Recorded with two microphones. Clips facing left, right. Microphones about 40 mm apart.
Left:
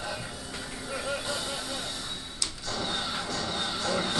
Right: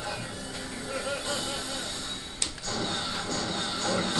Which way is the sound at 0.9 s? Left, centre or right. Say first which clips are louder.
Even; centre.